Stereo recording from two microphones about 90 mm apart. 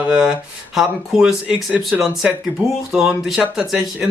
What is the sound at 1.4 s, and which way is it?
Speech, 15° right (ahead or behind).